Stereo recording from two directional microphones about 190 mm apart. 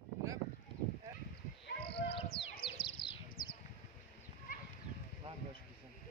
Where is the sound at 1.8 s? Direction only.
30° left (ahead or behind).